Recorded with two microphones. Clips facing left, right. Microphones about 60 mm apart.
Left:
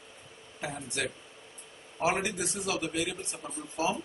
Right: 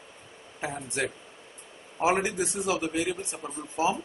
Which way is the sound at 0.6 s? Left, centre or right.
Right.